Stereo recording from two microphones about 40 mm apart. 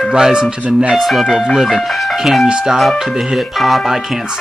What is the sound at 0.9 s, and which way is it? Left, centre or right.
Speech, centre.